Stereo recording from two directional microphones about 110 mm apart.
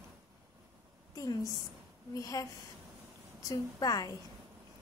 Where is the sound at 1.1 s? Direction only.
30° left (ahead or behind).